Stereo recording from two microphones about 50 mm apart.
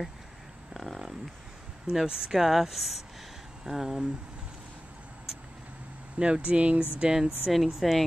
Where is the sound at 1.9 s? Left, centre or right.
Centre.